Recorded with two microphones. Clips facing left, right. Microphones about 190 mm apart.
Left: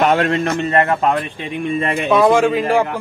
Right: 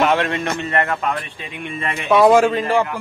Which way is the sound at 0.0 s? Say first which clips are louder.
Left 3 dB; 40° left (ahead or behind).